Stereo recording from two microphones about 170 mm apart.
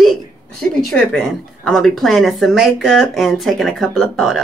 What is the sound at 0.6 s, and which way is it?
A woman's voice, 5° left (ahead or behind).